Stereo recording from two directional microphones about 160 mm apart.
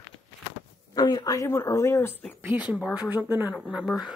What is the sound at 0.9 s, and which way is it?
Speech, 25° left (ahead or behind).